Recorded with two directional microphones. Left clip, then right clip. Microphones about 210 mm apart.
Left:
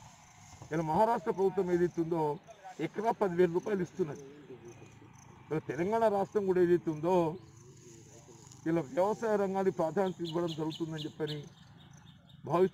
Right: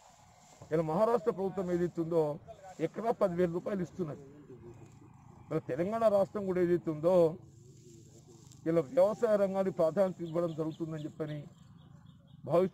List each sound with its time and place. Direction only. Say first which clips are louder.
0.7 s a man's voice: even; 20° right (ahead or behind)
5.5 s a man's voice: left 1 dB; 20° right (ahead or behind)
8.6 s a man's voice: right 3 dB; 20° right (ahead or behind)
12.4 s a man's voice: even; 20° right (ahead or behind)